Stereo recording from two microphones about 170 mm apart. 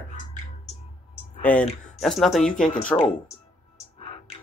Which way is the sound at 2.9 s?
15° left (ahead or behind).